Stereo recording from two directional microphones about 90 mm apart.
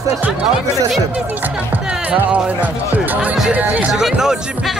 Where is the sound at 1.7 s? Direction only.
15° right (ahead or behind).